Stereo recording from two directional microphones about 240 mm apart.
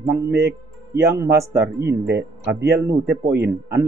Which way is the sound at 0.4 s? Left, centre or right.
Right.